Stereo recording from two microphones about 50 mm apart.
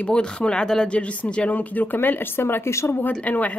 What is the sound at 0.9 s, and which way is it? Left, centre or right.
Speech, left.